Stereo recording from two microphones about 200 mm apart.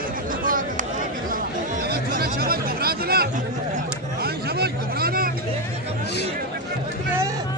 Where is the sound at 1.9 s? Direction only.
50° right (ahead or behind).